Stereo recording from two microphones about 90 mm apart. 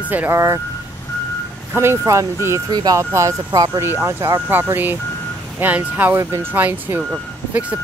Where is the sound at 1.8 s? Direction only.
30° right (ahead or behind).